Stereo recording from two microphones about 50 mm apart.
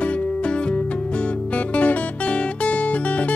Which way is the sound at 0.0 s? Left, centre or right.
Left.